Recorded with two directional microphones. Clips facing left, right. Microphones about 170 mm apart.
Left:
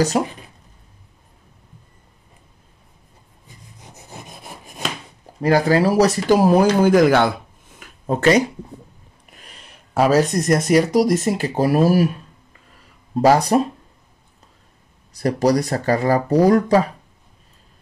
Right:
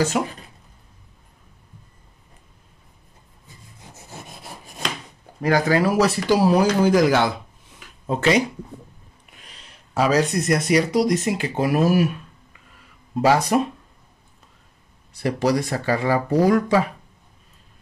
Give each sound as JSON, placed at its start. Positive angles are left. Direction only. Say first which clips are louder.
{"t": 0.2, "sound": "speech", "louder": "left 3 dB", "side_deg": 35}
{"t": 3.8, "sound": "rub", "louder": "left 1 dB", "side_deg": 15}
{"t": 5.4, "sound": "speech", "louder": "left 3 dB", "side_deg": 30}
{"t": 7.8, "sound": "a sound", "louder": "left 4 dB", "side_deg": 45}
{"t": 9.4, "sound": "speech", "louder": "left 3 dB", "side_deg": 50}
{"t": 13.2, "sound": "speech", "louder": "left 3 dB", "side_deg": 40}
{"t": 15.1, "sound": "speech", "louder": "left 3 dB", "side_deg": 40}